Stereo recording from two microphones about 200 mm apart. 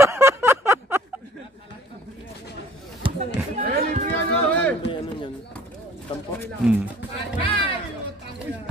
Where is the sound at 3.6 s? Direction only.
45° right (ahead or behind).